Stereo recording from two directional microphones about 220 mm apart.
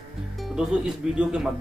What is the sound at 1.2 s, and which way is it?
Speech, 5° right (ahead or behind).